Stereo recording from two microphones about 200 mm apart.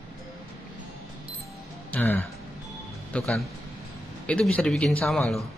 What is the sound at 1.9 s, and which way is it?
Speech, 10° left (ahead or behind).